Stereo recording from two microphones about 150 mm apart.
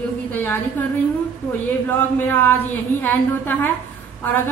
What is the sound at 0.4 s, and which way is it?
Speech, 15° left (ahead or behind).